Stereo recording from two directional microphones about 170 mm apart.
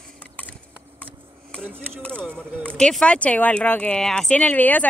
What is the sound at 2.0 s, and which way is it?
Speech, 5° left (ahead or behind).